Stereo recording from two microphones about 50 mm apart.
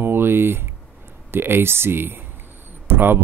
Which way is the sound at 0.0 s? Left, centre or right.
Right.